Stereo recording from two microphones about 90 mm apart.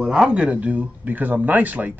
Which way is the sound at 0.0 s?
5° right (ahead or behind).